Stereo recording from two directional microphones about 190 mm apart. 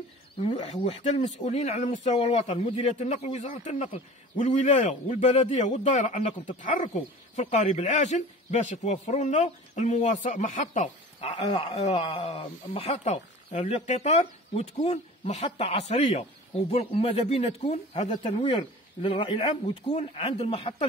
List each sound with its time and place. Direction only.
0.4 s a man's voice: 30° left (ahead or behind)
11.1 s a man's voice: 30° left (ahead or behind)
18.4 s a man's voice: 30° left (ahead or behind)